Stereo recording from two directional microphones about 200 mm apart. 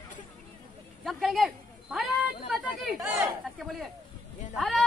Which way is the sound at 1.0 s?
Centre (ahead or behind).